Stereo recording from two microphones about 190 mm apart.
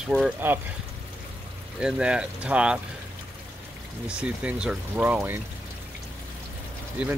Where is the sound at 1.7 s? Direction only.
5° right (ahead or behind).